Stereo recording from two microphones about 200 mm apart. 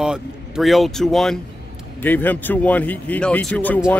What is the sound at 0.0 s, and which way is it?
Speech, centre (ahead or behind).